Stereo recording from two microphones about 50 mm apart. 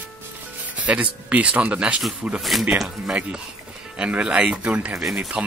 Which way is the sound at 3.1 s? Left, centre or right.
Right.